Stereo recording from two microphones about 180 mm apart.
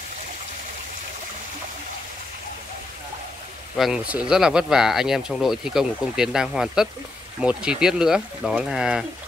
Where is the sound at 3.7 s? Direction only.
5° right (ahead or behind).